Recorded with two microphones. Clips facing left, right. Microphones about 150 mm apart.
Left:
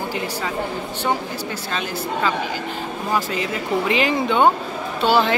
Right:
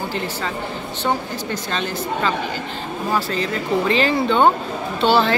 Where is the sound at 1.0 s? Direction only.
10° left (ahead or behind).